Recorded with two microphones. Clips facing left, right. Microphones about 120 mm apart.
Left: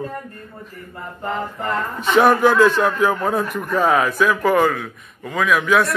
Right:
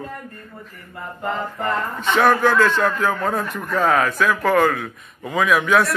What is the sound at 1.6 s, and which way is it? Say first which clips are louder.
A man's voice: even; 5° left (ahead or behind).